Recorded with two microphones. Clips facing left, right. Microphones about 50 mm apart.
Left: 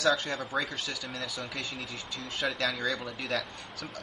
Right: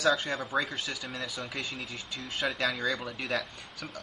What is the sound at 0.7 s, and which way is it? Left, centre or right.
Speech, centre.